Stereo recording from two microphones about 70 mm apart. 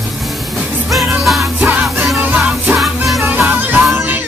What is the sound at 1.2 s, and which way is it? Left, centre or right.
Music, centre.